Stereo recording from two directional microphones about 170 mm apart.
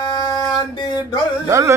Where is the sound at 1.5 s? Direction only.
15° right (ahead or behind).